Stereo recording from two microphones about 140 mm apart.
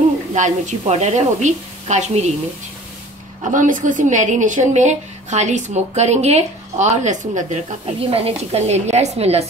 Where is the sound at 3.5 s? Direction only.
65° right (ahead or behind).